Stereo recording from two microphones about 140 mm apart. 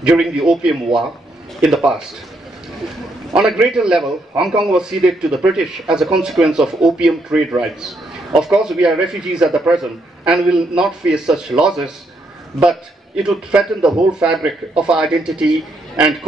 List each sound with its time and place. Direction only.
0.0 s a man's voice: 5° right (ahead or behind)
3.3 s a man's voice: 5° right (ahead or behind)